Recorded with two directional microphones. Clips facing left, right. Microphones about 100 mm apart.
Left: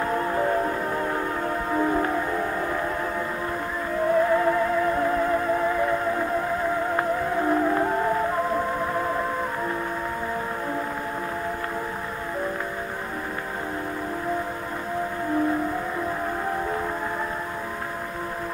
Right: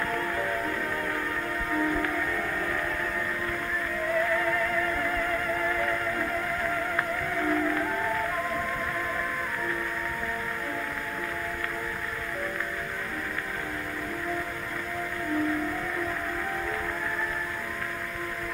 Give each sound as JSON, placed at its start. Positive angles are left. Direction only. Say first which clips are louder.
{"t": 0.0, "sound": "music", "louder": "left 6 dB", "side_deg": 30}
{"t": 4.1, "sound": "music", "louder": "left 7 dB", "side_deg": 30}